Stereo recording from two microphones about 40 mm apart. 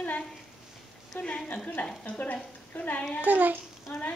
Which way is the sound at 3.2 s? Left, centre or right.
Right.